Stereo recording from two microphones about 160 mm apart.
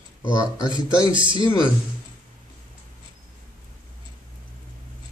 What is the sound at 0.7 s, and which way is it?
Speech, 30° right (ahead or behind).